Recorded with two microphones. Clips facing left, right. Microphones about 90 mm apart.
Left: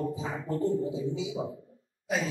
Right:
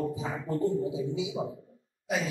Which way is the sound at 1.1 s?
20° right (ahead or behind).